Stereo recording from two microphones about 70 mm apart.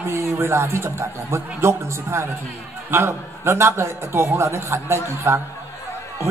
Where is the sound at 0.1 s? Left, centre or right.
Right.